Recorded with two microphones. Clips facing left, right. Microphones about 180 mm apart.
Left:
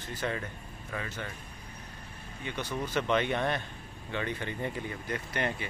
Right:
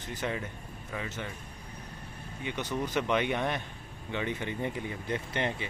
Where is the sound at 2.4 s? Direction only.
15° right (ahead or behind).